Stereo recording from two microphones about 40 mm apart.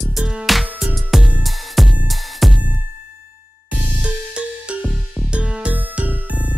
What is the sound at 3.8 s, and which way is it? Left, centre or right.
Music, right.